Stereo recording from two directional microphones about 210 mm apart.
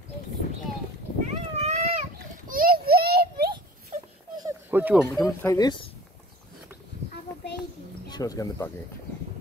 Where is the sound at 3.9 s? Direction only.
35° right (ahead or behind).